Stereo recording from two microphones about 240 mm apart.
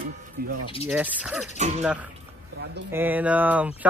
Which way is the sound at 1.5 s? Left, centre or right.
Right.